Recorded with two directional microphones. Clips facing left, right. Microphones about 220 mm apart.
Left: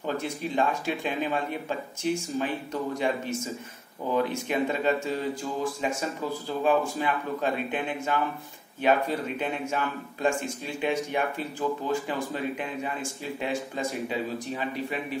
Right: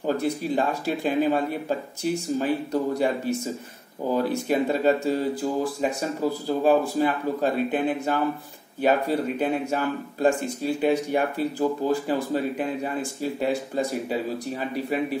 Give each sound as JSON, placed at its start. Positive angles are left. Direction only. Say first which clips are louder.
{"t": 0.0, "sound": "speech", "louder": "right 6 dB", "side_deg": -35}